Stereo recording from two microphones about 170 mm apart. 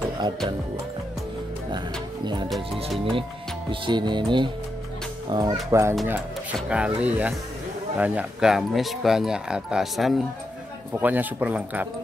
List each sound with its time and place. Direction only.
2.2 s music: 25° right (ahead or behind)
3.8 s music: 25° right (ahead or behind)
5.7 s speech: 15° right (ahead or behind)